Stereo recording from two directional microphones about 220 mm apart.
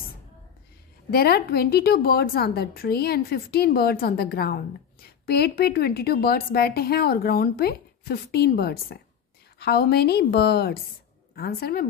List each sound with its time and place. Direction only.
1.1 s a woman's voice: 45° left (ahead or behind)